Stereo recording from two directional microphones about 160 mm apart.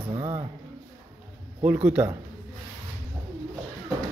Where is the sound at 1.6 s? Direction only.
10° right (ahead or behind).